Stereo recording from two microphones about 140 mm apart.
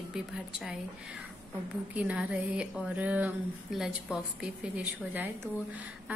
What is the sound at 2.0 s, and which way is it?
Speech, 10° right (ahead or behind).